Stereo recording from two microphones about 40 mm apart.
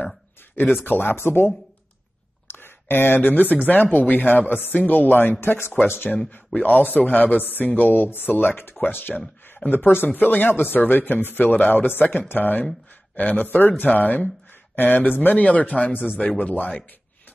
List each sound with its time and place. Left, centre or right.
0.8 s speech: left
5.4 s speech: left
6.1 s speech: centre
6.5 s speech: left
15.2 s speech: left